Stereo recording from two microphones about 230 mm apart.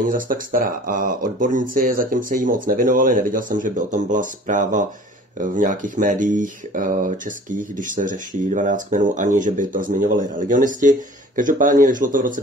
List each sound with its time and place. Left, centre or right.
0.0 s speech: right